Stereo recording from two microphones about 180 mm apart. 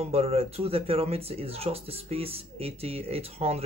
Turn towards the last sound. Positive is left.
turn(degrees=-35)  # may be behind; listen again after turning